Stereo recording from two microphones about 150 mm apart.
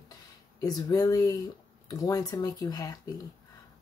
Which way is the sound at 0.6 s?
25° left (ahead or behind).